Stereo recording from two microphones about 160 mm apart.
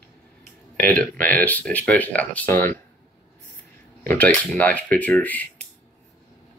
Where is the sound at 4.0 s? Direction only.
10° left (ahead or behind).